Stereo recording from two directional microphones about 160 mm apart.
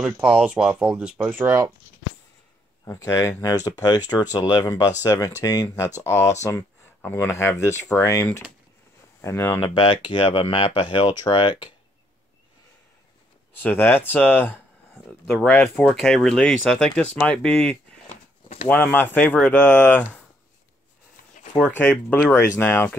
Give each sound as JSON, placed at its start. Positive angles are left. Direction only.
{"t": 0.0, "sound": "speech", "side_deg": -5}
{"t": 2.8, "sound": "speech", "side_deg": 20}
{"t": 9.6, "sound": "speech", "side_deg": 35}
{"t": 13.6, "sound": "speech", "side_deg": 10}
{"t": 18.0, "sound": "a sound", "side_deg": 45}
{"t": 18.7, "sound": "speech", "side_deg": 10}
{"t": 21.5, "sound": "speech", "side_deg": 10}